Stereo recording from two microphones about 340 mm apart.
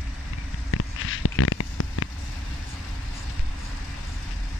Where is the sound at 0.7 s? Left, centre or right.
Left.